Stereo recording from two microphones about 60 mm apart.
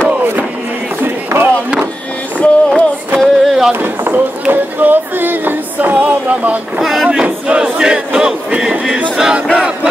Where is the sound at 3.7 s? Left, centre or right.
Right.